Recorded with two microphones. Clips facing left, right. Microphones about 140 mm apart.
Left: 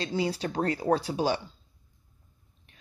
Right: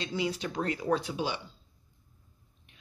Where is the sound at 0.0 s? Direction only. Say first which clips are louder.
Left 3 dB; 35° left (ahead or behind).